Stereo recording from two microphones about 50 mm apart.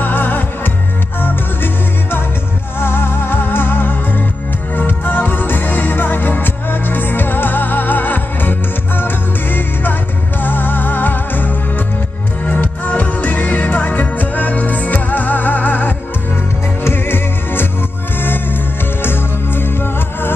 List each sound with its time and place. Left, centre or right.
0.0 s music: left
16.8 s music: left